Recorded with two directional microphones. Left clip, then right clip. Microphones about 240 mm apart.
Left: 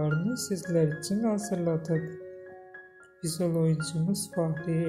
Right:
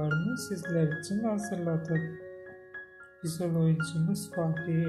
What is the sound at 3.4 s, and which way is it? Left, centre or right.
Speech, left.